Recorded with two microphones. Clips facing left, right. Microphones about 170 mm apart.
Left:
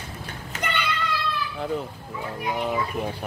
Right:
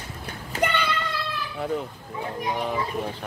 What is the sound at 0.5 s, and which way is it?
Child singing, 30° right (ahead or behind).